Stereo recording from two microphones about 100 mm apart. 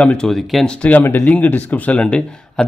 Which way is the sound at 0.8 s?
20° left (ahead or behind).